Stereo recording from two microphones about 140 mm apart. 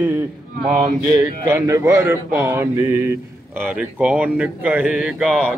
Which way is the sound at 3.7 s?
5° right (ahead or behind).